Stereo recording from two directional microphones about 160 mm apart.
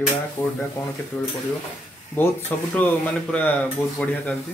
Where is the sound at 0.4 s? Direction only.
10° left (ahead or behind).